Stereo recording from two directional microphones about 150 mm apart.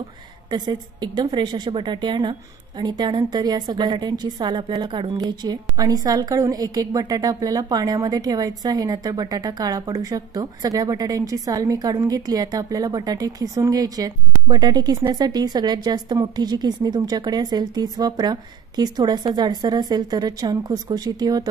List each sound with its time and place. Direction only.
0.5 s a woman's voice: 30° right (ahead or behind)